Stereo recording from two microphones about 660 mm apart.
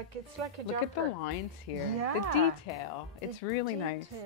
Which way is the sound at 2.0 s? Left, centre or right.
Right.